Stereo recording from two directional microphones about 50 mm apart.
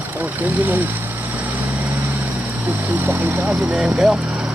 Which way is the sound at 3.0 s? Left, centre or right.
Right.